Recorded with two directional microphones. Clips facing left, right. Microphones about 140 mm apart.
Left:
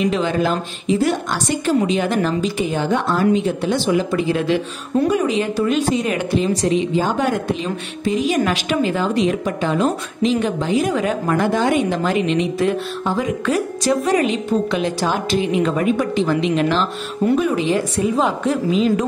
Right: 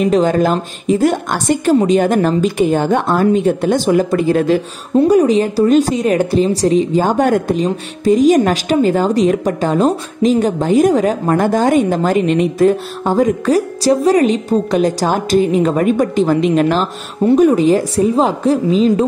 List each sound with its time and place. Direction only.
0.0 s a woman's voice: 45° right (ahead or behind)
4.9 s speech: 35° right (ahead or behind)